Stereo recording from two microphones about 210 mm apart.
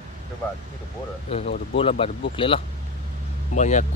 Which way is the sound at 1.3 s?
30° left (ahead or behind).